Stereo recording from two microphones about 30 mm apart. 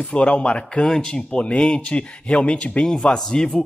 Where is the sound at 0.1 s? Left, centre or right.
Left.